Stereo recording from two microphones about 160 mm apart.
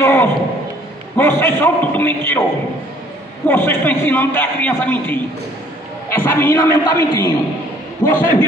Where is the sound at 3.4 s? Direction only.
15° left (ahead or behind).